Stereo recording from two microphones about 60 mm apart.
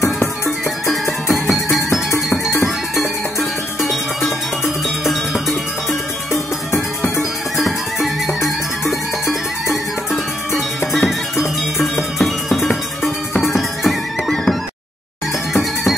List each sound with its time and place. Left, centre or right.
0.8 s music: centre
7.2 s music: centre